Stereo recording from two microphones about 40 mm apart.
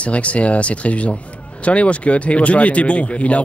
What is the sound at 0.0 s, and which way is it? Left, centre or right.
Speech, left.